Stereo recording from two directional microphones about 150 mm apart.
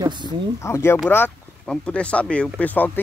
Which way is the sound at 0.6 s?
15° left (ahead or behind).